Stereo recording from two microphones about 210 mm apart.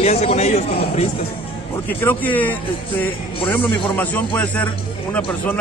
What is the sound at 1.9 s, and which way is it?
Speech, 10° left (ahead or behind).